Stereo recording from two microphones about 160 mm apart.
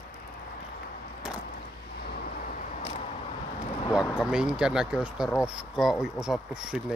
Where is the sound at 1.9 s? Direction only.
80° left; by 3.1 s 50° left (ahead or behind).